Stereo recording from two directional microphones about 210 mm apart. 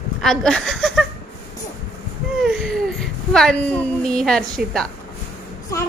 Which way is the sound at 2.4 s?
Centre (ahead or behind).